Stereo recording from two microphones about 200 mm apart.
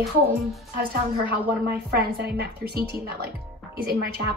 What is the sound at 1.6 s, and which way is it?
A woman's voice, 50° right (ahead or behind).